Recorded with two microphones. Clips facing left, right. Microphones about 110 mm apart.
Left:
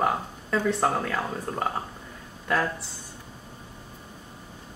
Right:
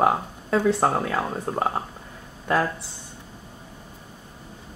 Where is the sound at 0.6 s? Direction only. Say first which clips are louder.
Right 3 dB; 30° right (ahead or behind).